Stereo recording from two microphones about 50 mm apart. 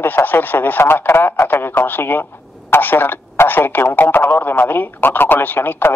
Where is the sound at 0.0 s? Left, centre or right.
Left.